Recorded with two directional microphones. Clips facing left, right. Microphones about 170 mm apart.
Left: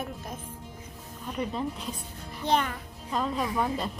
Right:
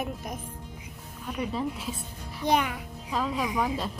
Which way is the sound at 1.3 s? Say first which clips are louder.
Right 1 dB; 5° right (ahead or behind).